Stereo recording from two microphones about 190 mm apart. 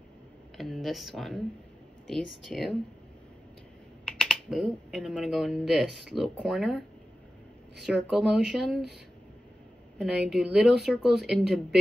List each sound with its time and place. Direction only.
0.6 s a woman's voice: centre (ahead or behind)
4.0 s speech: 5° left (ahead or behind)
5.9 s speech: 60° right (ahead or behind)
6.1 s a woman's voice: centre (ahead or behind)
7.8 s a woman's voice: centre (ahead or behind)
9.9 s a woman's voice: centre (ahead or behind)